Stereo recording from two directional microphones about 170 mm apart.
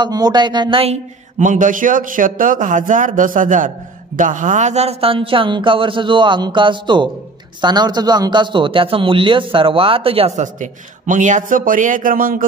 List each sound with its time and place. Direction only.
0.0 s speech: 25° right (ahead or behind)
1.4 s a man's voice: 50° right (ahead or behind)